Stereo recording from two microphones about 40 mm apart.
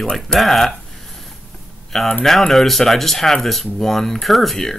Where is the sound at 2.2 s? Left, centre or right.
Centre.